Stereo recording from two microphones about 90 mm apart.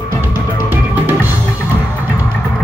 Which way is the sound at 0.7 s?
20° right (ahead or behind).